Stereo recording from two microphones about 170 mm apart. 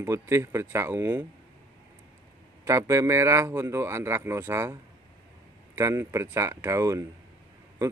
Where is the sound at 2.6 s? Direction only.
20° right (ahead or behind).